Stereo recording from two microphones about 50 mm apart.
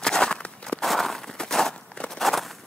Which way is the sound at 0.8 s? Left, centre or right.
Centre.